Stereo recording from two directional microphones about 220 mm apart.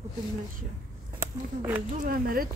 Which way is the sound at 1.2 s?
10° right (ahead or behind).